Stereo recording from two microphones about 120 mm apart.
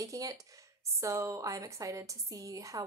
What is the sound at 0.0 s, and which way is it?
Speech, 30° right (ahead or behind).